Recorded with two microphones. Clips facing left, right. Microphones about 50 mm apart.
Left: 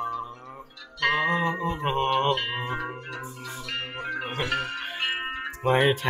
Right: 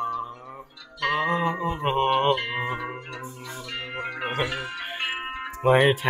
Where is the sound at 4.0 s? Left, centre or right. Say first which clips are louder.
Right 3 dB; right.